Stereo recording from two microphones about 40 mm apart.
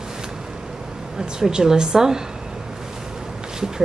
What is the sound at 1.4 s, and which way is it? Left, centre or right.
Speech, centre.